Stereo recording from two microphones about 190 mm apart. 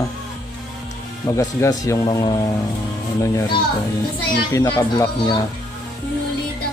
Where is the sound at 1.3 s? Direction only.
15° left (ahead or behind).